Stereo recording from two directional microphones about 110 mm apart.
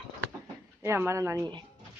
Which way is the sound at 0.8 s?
20° right (ahead or behind).